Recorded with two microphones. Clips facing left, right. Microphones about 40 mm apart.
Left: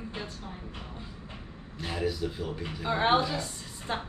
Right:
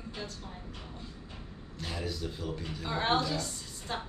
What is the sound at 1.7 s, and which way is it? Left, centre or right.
A woman's voice, centre.